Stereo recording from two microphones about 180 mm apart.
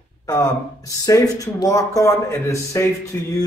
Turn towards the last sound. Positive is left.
turn(degrees=15)  # may be behind; listen again after turning